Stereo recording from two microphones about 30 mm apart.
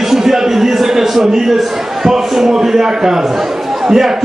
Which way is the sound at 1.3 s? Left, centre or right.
Centre.